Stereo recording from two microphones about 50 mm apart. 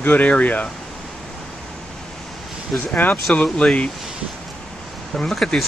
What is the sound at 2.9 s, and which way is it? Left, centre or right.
Speech, left.